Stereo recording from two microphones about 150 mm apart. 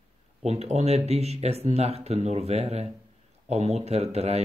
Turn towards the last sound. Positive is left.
turn(degrees=-45)  # may be behind; listen again after turning